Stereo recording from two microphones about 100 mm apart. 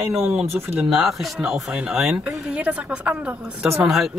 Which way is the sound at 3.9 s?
Centre (ahead or behind).